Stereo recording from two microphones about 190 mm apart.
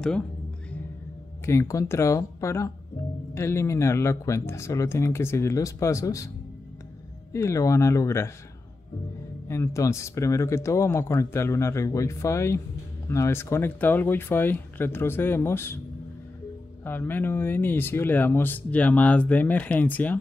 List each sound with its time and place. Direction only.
1.4 s speech: 15° left (ahead or behind)
7.3 s speech: 15° left (ahead or behind)
9.5 s speech: 15° left (ahead or behind)
16.8 s speech: 10° left (ahead or behind)